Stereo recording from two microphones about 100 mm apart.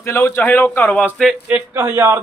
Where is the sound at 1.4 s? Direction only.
20° right (ahead or behind).